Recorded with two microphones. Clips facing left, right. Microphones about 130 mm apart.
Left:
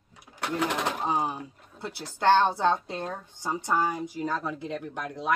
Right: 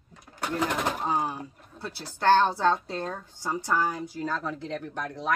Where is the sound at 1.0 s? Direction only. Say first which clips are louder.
Even; 15° left (ahead or behind).